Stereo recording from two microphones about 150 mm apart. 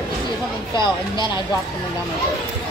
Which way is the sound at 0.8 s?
30° left (ahead or behind).